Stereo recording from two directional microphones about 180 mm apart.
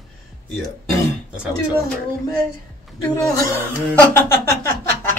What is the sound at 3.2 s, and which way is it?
A woman's voice, 20° left (ahead or behind).